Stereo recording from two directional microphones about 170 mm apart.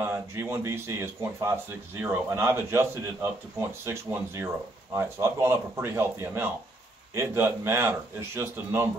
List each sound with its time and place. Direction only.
0.0 s a man's voice: 15° right (ahead or behind)